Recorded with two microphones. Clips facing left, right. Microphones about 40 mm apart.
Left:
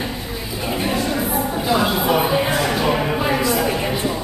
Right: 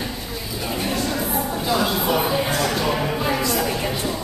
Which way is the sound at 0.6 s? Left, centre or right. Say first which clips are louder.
Left 3 dB; centre.